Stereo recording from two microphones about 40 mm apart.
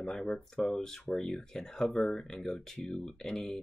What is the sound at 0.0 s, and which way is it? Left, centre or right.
Speech, centre.